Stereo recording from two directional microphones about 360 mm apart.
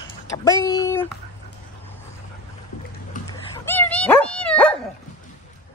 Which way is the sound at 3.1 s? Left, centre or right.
Left.